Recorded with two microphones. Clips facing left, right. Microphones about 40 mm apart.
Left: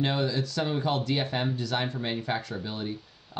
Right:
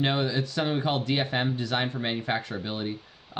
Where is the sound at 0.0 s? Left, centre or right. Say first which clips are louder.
Right 1 dB; right.